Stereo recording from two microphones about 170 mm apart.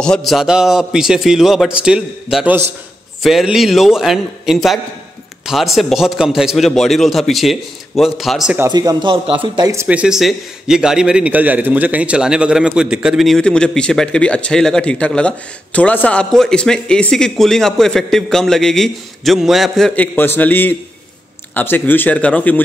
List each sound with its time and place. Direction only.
0.0 s a man's voice: centre (ahead or behind)
8.5 s speech: 20° right (ahead or behind)
9.7 s a man's voice: 10° right (ahead or behind); by 22.6 s 10° left (ahead or behind)